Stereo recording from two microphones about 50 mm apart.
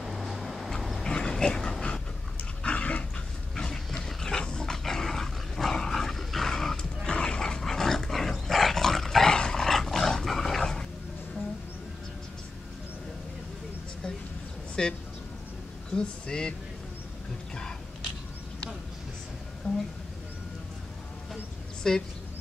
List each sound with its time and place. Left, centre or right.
0.0 s a sound: centre
1.0 s dog: centre
3.5 s dog: centre
14.8 s speech: centre
21.8 s speech: centre